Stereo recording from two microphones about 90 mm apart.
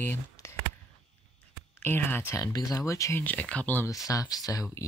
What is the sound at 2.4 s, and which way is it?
Speech, 40° left (ahead or behind).